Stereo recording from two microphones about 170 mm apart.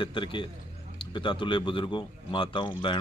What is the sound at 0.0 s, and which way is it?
Speech, 30° left (ahead or behind).